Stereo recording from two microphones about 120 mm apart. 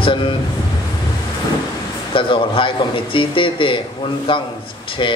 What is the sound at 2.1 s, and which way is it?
A man's voice, 45° left (ahead or behind).